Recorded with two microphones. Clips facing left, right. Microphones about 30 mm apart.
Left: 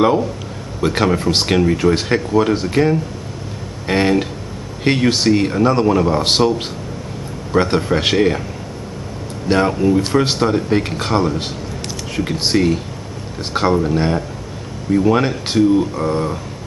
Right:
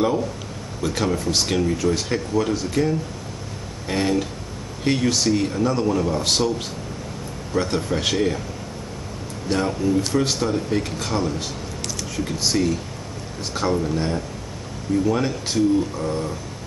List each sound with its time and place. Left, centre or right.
0.0 s speech: left
7.5 s speech: left
9.5 s speech: left